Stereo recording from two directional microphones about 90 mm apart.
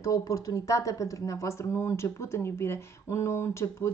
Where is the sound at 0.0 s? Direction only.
35° left (ahead or behind).